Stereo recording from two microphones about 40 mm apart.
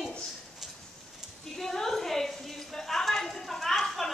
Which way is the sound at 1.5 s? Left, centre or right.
Centre.